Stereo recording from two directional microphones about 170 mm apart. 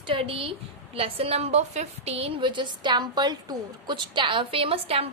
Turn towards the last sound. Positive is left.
turn(degrees=-35)  # may be behind; listen again after turning